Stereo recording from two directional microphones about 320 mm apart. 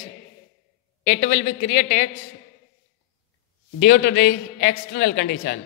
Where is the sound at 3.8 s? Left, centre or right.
Left.